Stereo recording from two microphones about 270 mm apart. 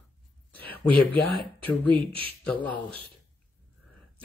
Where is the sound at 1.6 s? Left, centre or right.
Centre.